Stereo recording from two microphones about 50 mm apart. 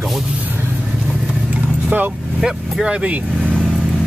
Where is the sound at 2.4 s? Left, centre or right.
Centre.